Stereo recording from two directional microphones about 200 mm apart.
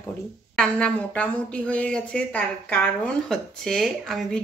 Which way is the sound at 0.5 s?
5° left (ahead or behind).